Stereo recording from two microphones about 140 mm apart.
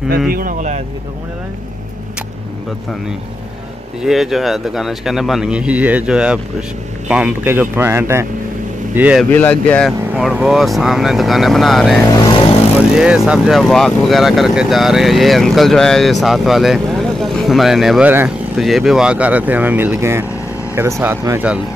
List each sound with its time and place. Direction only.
0.3 s speech: 85° right; by 0.8 s 65° right (ahead or behind)
4.0 s speech: centre (ahead or behind)
9.3 s speech: 10° left (ahead or behind)
10.1 s speech: 5° right (ahead or behind)